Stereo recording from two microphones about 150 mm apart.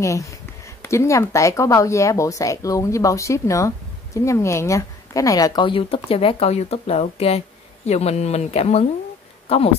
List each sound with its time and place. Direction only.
0.0 s speech: 20° left (ahead or behind); by 9.8 s 40° left (ahead or behind)